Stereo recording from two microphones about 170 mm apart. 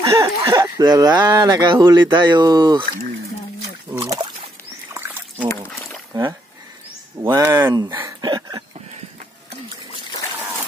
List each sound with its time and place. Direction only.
0.0 s speech: 20° right (ahead or behind)
4.0 s a sound: 30° right (ahead or behind)
4.9 s trickle: 10° right (ahead or behind)
6.1 s speech: 25° right (ahead or behind)
8.2 s dog: 25° right (ahead or behind)